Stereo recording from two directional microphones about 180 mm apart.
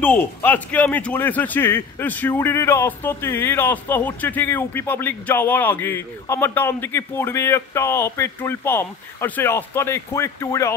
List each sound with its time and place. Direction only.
0.0 s speech: 10° left (ahead or behind)